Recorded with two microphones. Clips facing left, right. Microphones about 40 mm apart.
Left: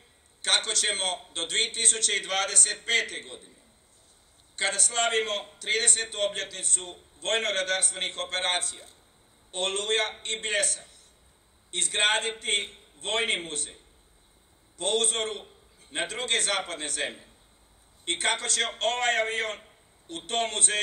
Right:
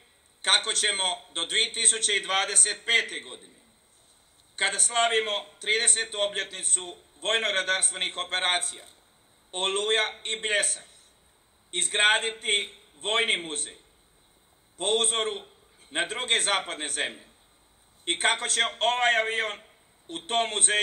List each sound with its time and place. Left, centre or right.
0.4 s a man's voice: right
4.6 s a man's voice: right
14.8 s a man's voice: right